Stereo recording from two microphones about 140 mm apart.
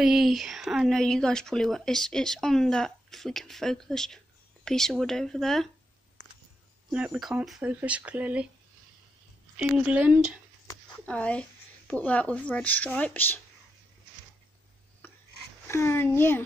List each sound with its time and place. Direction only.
0.0 s speech: centre (ahead or behind)
6.9 s speech: 5° right (ahead or behind)
9.7 s speech: 10° right (ahead or behind)
11.1 s speech: 10° left (ahead or behind)
15.0 s filing: 15° left (ahead or behind)
15.6 s speech: 15° left (ahead or behind)